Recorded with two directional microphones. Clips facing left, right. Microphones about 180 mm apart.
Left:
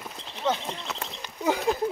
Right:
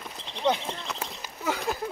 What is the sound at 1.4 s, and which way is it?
Speech, 20° left (ahead or behind).